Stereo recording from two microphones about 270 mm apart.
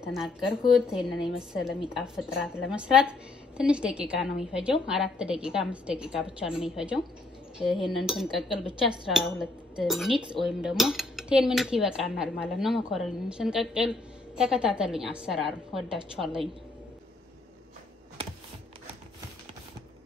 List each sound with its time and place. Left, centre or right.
0.0 s cutlery: centre